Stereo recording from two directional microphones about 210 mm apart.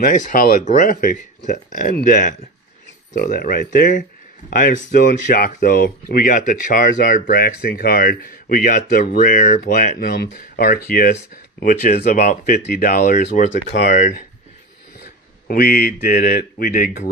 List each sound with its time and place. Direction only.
0.0 s speech: 40° left (ahead or behind)
15.4 s speech: 45° left (ahead or behind)